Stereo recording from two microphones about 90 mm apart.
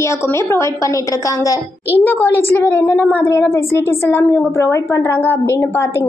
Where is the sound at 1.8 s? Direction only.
20° left (ahead or behind).